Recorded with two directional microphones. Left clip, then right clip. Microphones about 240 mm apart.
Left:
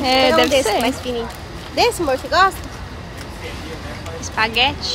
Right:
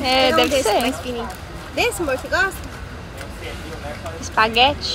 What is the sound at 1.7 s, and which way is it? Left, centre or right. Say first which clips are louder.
Speech: left 4 dB; left.